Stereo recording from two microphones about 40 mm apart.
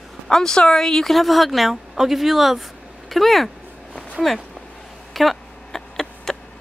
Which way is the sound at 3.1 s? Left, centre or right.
Centre.